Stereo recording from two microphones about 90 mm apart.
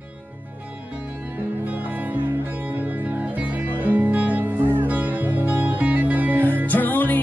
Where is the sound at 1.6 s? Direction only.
20° right (ahead or behind).